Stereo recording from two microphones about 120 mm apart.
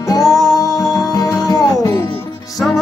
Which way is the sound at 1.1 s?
30° left (ahead or behind).